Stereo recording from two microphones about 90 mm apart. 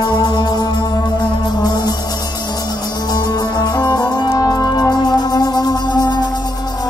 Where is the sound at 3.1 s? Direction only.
50° left (ahead or behind).